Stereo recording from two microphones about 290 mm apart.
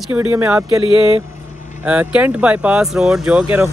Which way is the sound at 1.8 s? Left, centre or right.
Centre.